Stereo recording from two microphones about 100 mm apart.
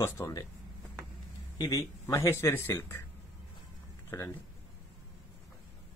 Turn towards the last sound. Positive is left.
turn(degrees=25)  # may be behind; listen again after turning